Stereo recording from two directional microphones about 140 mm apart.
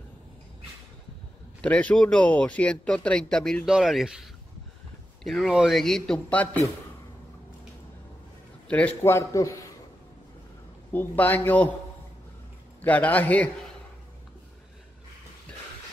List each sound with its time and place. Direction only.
1.6 s a man's voice: 10° left (ahead or behind)
8.6 s a man's voice: 10° left (ahead or behind)
10.9 s speech: 15° left (ahead or behind)
12.8 s speech: 10° left (ahead or behind)